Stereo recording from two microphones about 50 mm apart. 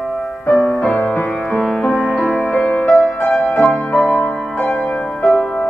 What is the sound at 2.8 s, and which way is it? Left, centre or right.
Music, centre.